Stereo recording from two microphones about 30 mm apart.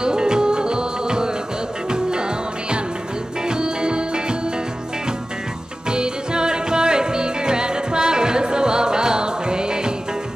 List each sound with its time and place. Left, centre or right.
0.0 s music: right
3.4 s music: right
5.9 s music: right